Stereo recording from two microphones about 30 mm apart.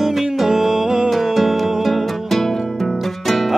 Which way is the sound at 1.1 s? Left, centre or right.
Centre.